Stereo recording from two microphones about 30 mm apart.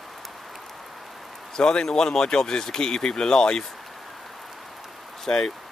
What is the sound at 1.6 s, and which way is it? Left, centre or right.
Speech, left.